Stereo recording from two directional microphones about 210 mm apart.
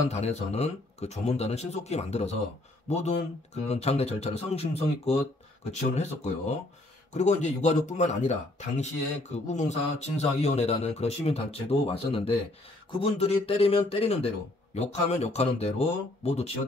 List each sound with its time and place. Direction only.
0.1 s speech: 30° left (ahead or behind)